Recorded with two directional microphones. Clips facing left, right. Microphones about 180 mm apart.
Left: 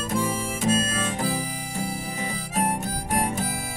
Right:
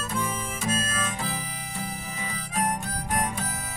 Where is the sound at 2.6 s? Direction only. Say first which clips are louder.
Left 2 dB; 10° left (ahead or behind).